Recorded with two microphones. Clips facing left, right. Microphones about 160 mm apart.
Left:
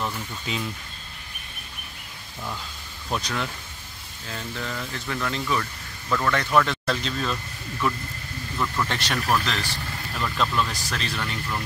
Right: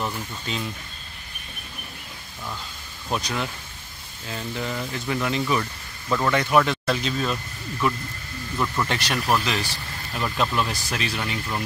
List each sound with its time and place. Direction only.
3.1 s speech: 10° right (ahead or behind)
4.6 s speech: 15° right (ahead or behind)
8.5 s speech: 10° right (ahead or behind)